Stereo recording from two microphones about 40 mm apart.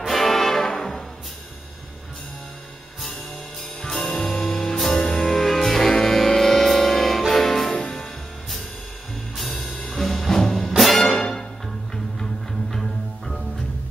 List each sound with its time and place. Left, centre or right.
0.0 s music: centre
3.8 s music: centre
5.3 s music: centre
7.7 s music: centre
9.4 s music: centre